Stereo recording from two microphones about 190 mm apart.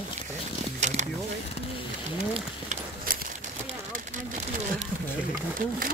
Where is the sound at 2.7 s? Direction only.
50° right (ahead or behind).